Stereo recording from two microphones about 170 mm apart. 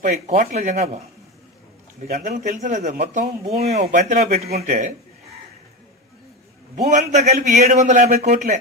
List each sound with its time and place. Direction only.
0.0 s speech: 45° right (ahead or behind)
2.0 s speech: 50° right (ahead or behind)
6.7 s speech: 45° right (ahead or behind)